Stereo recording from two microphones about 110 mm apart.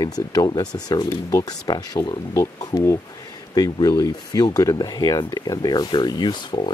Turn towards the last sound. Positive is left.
turn(degrees=45)  # may be behind; listen again after turning